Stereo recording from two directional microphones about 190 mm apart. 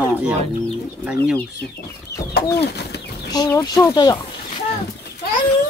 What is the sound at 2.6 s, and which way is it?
Bird, 60° left (ahead or behind).